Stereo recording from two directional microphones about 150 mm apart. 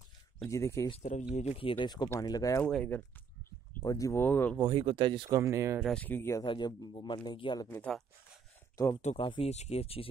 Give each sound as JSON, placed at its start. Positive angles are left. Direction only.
{"t": 0.5, "sound": "speech", "side_deg": 20}
{"t": 1.3, "sound": "speech", "side_deg": 50}
{"t": 2.6, "sound": "speech", "side_deg": 10}
{"t": 3.8, "sound": "speech", "side_deg": 20}
{"t": 4.6, "sound": "speech", "side_deg": -35}
{"t": 5.3, "sound": "speech", "side_deg": -20}
{"t": 5.8, "sound": "speech", "side_deg": 0}
{"t": 6.0, "sound": "speech", "side_deg": 15}
{"t": 6.4, "sound": "a man's voice", "side_deg": 30}
{"t": 7.6, "sound": "speech", "side_deg": 5}
{"t": 8.7, "sound": "speech", "side_deg": 20}
{"t": 9.0, "sound": "speech", "side_deg": 40}